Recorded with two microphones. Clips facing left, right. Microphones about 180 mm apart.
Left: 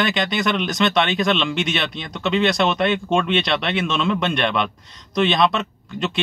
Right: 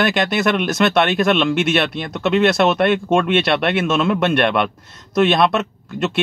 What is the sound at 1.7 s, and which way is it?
Speech, 60° right (ahead or behind).